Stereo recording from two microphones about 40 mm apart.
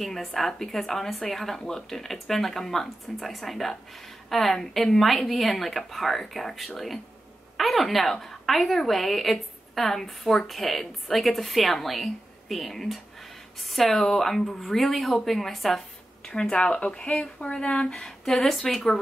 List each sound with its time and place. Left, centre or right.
0.0 s a woman's voice: centre
16.3 s speech: left
17.9 s speech: centre